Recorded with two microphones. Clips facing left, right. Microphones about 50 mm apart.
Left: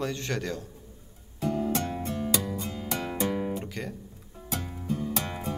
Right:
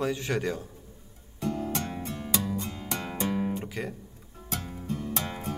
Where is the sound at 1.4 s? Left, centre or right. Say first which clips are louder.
Left 3 dB; left.